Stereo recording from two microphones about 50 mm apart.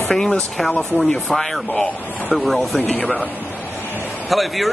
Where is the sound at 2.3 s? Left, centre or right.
Centre.